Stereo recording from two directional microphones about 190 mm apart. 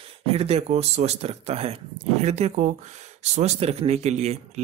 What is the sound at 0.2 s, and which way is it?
Speech, 30° right (ahead or behind).